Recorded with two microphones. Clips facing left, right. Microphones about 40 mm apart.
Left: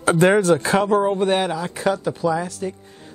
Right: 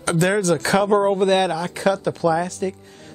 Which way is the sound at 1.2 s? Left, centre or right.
Centre.